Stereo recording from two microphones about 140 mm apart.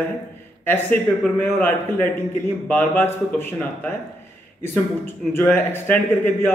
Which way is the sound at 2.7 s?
15° left (ahead or behind).